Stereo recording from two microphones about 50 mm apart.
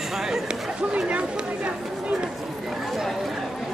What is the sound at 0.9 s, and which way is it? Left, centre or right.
Chatter, right.